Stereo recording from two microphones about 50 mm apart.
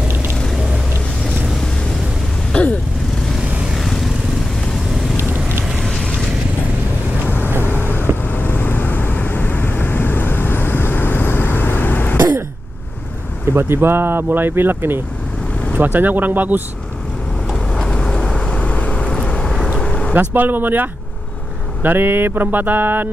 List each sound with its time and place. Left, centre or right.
2.5 s vehicle: left
3.3 s vehicle: centre
5.8 s boat: centre
7.2 s vehicle: left
13.5 s speech: right
15.7 s music: right
17.6 s vehicle: centre
20.2 s music: right